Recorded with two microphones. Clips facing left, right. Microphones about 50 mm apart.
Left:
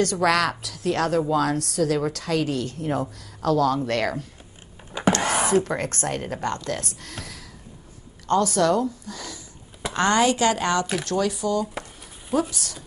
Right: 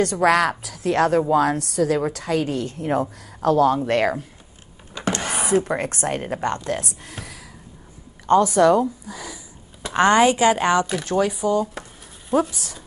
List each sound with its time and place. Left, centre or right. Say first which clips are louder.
0.0 s a woman's voice: right 3 dB; right
4.9 s a sound: left 4 dB; centre
5.5 s a woman's voice: right 1 dB; centre